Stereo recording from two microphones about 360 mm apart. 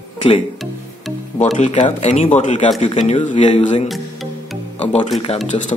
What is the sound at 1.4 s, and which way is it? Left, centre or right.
Speech, centre.